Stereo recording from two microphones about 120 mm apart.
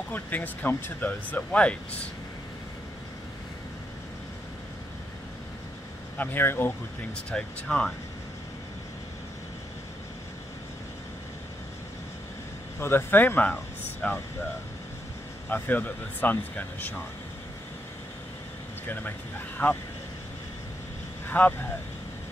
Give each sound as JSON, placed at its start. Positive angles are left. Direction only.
{"t": 0.1, "sound": "speech", "side_deg": 15}
{"t": 6.1, "sound": "speech", "side_deg": 15}
{"t": 7.2, "sound": "speech", "side_deg": 5}
{"t": 12.8, "sound": "speech", "side_deg": 20}
{"t": 15.5, "sound": "speech", "side_deg": 15}
{"t": 19.6, "sound": "speech", "side_deg": 15}
{"t": 21.3, "sound": "speech", "side_deg": 15}